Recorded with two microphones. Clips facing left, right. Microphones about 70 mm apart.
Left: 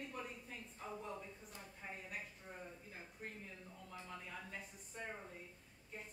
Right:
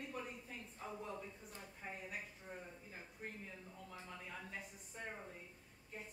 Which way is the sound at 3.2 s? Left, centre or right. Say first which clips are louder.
Right 1 dB; centre.